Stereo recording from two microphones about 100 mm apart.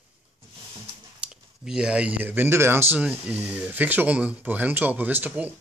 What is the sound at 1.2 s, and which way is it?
Speech, 5° right (ahead or behind).